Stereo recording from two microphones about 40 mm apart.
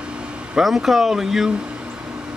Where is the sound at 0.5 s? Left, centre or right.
Centre.